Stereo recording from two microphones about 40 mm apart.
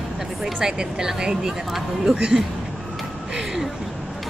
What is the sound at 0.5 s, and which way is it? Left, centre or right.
Speech, centre.